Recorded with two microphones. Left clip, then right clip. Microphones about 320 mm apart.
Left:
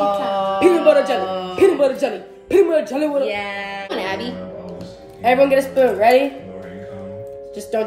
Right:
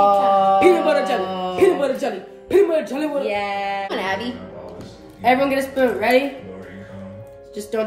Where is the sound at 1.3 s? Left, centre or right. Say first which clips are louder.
Even; centre.